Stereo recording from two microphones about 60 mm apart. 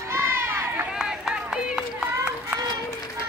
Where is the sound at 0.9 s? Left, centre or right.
Centre.